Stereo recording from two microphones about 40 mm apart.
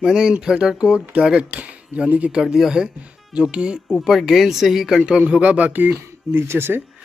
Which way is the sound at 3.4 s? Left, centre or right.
Right.